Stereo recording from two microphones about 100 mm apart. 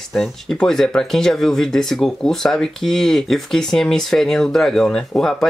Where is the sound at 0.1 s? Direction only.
Centre (ahead or behind).